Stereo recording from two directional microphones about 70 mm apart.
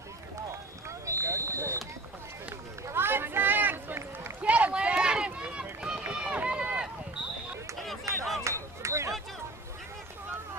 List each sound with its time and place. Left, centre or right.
0.5 s run: right
2.9 s run: right
4.4 s run: centre
8.1 s chop: right
8.8 s a sound: right